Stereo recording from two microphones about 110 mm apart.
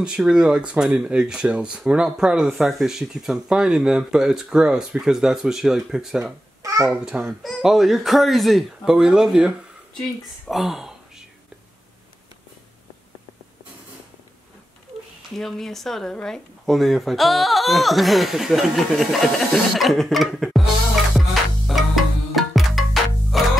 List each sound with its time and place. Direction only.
0.0 s speech: 10° right (ahead or behind)
6.6 s babbling: 30° right (ahead or behind)
6.9 s speech: 5° right (ahead or behind)
10.5 s speech: 5° right (ahead or behind)
15.3 s speech: 5° left (ahead or behind)
21.3 s music: centre (ahead or behind)